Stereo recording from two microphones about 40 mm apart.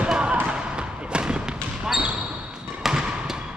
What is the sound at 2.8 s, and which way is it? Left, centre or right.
Basketball bounce, centre.